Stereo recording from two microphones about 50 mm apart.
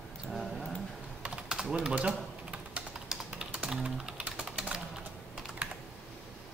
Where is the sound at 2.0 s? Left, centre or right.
Right.